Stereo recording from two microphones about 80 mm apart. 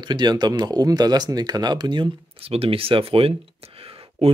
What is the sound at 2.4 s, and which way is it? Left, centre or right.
Speech, right.